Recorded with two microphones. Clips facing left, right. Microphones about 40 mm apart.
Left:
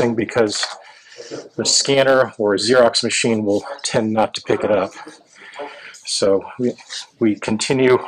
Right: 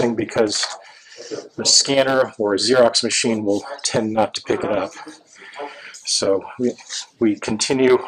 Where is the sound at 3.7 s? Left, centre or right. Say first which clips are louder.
Left 2 dB; left.